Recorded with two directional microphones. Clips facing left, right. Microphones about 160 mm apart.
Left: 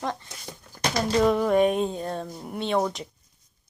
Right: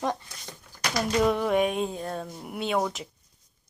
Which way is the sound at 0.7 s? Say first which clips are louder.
Left 2 dB; 30° left (ahead or behind).